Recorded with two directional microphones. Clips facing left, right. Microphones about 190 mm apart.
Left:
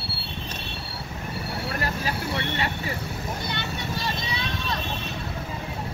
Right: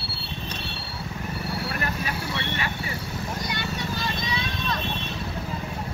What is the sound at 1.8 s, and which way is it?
Vehicle, 35° left (ahead or behind).